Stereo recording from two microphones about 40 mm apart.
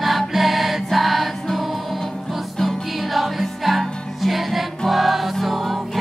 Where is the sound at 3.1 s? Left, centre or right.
Centre.